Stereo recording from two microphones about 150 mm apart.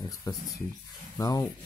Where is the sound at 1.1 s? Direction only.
25° left (ahead or behind).